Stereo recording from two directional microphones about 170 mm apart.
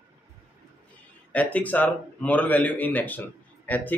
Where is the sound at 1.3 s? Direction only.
10° left (ahead or behind).